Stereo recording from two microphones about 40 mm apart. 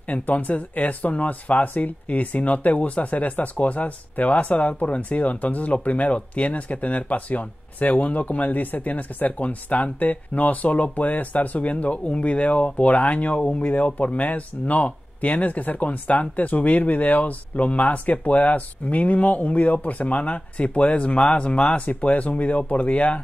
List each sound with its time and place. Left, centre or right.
0.1 s speech: left